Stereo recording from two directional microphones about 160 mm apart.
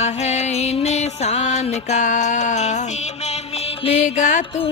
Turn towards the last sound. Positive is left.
turn(degrees=35)  # may be behind; listen again after turning